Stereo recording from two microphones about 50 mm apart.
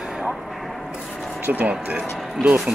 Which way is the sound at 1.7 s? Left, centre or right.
Right.